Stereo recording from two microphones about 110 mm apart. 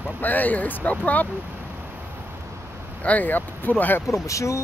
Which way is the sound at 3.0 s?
15° left (ahead or behind).